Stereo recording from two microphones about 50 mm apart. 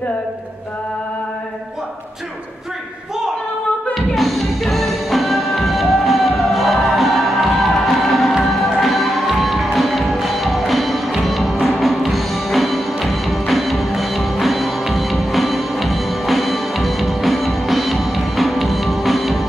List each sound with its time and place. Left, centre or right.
3.9 s music: centre